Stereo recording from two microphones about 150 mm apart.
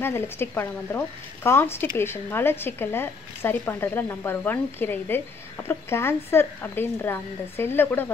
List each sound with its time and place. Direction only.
0.0 s a woman's voice: 15° left (ahead or behind)